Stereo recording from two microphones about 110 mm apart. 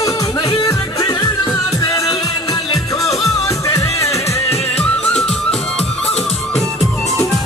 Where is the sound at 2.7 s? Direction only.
30° left (ahead or behind).